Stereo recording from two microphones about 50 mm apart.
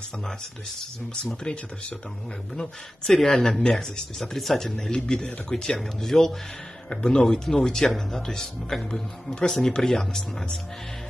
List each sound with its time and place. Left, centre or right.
1.4 s speech: left
3.1 s a man's voice: centre
6.9 s a man's voice: left